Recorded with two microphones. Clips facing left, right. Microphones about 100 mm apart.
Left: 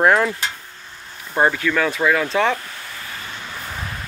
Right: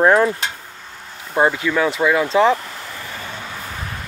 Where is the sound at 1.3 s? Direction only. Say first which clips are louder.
Right 1 dB; 15° right (ahead or behind).